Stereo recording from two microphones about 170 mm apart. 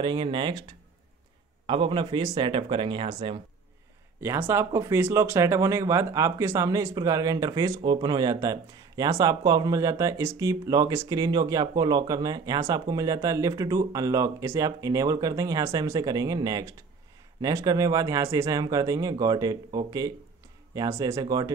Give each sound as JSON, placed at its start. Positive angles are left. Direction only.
{"t": 0.0, "sound": "speech", "side_deg": -30}
{"t": 1.7, "sound": "speech", "side_deg": -30}
{"t": 4.2, "sound": "speech", "side_deg": -15}